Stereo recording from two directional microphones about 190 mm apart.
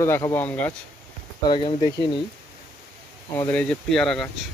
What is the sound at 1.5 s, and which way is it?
Speech, 25° left (ahead or behind).